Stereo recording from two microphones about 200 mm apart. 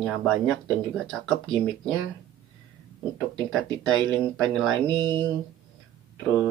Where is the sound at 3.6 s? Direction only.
Centre (ahead or behind).